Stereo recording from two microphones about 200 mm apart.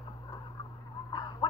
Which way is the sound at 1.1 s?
20° left (ahead or behind).